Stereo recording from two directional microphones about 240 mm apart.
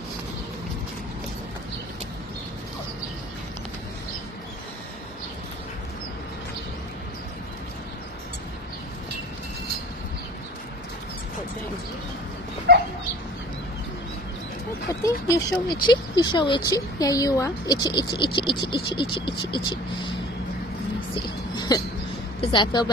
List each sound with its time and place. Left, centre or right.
12.7 s dog: right
14.9 s speech: centre
21.1 s music: centre
22.4 s speech: centre